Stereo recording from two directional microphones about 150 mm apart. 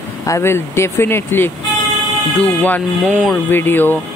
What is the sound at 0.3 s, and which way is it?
Speech, 15° left (ahead or behind).